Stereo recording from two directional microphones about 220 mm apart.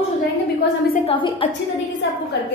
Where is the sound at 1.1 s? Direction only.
25° left (ahead or behind).